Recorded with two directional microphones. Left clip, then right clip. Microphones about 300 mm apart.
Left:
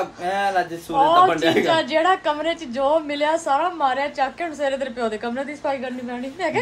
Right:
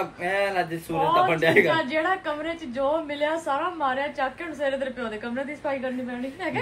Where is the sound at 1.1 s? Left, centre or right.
Left.